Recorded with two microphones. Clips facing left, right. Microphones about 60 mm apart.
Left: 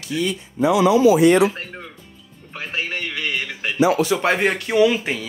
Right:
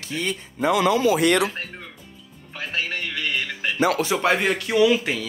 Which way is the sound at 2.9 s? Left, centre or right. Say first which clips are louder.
Left 1 dB; centre.